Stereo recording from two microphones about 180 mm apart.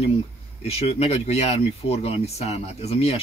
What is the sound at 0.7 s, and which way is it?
Speech, 35° left (ahead or behind).